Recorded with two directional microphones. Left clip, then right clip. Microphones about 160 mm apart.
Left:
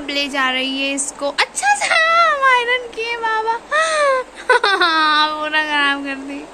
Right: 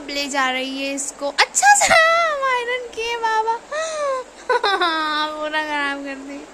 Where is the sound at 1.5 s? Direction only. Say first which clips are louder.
Right 5 dB; 40° right (ahead or behind).